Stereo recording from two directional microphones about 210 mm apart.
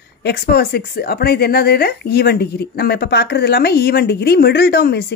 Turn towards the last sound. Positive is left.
turn(degrees=50)  # may be behind; listen again after turning